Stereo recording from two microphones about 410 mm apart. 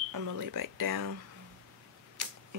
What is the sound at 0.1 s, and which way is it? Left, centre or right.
Speech, right.